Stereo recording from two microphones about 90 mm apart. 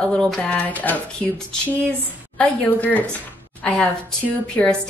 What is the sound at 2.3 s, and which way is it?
Speech, 15° left (ahead or behind).